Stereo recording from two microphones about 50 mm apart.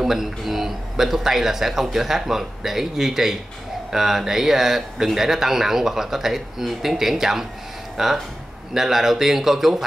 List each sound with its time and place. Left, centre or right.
0.0 s speech: centre